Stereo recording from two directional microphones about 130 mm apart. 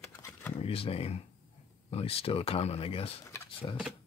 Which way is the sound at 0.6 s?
45° left (ahead or behind).